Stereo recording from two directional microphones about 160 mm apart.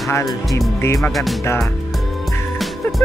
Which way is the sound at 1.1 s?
Centre (ahead or behind).